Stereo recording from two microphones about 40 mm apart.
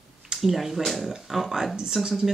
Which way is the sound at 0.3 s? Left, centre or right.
Centre.